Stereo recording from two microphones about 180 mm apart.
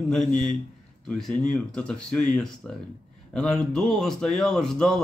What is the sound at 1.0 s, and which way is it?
Speech, 5° left (ahead or behind).